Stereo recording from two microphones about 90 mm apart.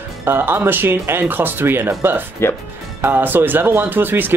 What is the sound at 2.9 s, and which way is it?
Speech, 20° right (ahead or behind).